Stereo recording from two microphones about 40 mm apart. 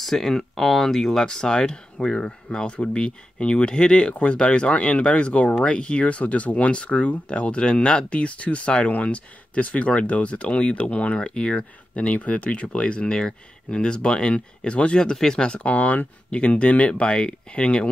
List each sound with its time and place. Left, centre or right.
0.0 s speech: centre; by 11.5 s left
11.5 s speech: left
15.6 s speech: left
16.3 s speech: left